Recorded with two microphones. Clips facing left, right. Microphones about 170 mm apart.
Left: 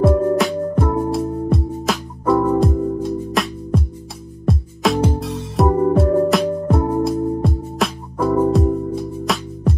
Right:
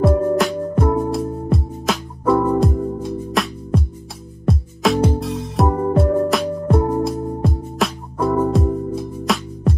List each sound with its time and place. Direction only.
0.0 s music: centre (ahead or behind)